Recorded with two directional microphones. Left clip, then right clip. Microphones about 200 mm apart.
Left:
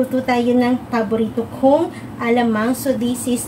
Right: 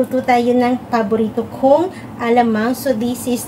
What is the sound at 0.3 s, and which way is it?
Speech, 10° right (ahead or behind).